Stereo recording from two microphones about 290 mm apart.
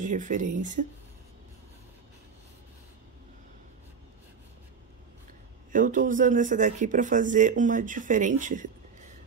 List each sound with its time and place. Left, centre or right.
0.0 s speech: right
5.7 s speech: right